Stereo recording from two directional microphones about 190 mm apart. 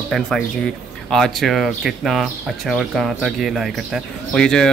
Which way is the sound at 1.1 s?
Centre (ahead or behind).